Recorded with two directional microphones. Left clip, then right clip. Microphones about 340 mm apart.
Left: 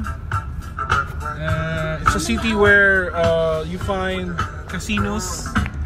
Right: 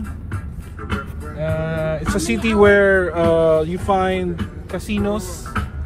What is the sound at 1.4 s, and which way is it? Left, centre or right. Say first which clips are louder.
Speech: right 4 dB; centre.